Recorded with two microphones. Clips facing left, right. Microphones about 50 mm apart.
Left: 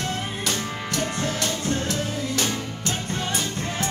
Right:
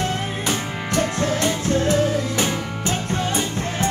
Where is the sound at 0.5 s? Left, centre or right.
Centre.